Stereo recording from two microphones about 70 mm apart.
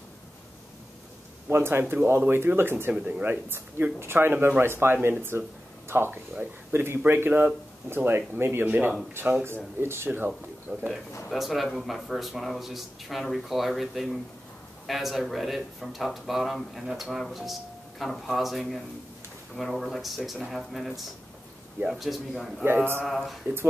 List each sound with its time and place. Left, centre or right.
1.5 s speech: right
2.9 s speech: right
8.6 s speech: right
10.7 s speech: centre